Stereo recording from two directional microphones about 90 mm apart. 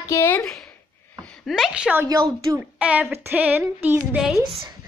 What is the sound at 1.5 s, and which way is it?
A woman's voice, 5° right (ahead or behind).